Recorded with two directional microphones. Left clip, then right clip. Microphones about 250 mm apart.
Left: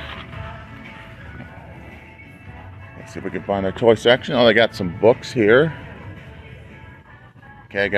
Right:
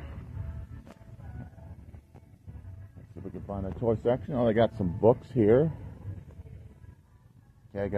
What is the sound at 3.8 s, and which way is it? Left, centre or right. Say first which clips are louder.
Speech: left 13 dB; left.